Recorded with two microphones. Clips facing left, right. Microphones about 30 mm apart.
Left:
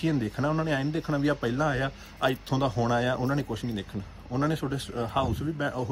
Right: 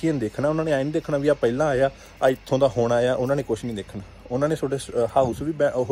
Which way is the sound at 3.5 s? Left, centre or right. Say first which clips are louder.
Right 9 dB; right.